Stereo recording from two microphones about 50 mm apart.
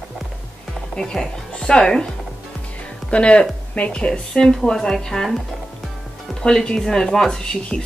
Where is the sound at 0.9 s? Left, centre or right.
Centre.